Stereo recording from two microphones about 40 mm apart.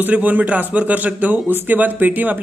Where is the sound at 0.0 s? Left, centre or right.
Right.